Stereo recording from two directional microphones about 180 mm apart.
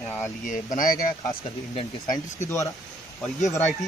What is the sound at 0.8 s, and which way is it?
Speech, 45° left (ahead or behind).